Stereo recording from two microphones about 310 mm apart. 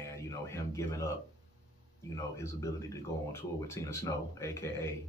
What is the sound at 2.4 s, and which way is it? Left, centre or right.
Speech, centre.